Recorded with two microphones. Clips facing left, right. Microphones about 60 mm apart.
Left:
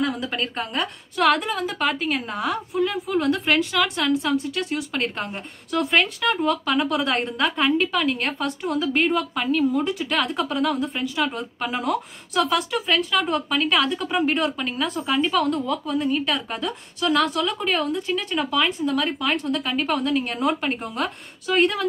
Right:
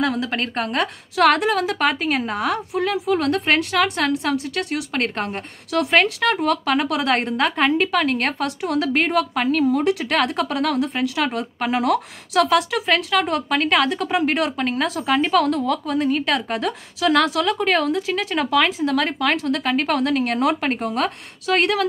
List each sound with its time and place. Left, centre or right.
0.0 s a woman's voice: right
0.3 s a woman's voice: right
5.7 s a woman's voice: right